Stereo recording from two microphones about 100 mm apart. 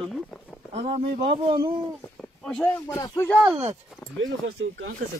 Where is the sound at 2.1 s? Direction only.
5° left (ahead or behind).